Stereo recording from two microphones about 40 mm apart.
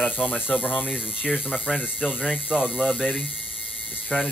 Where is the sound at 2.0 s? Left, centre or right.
Left.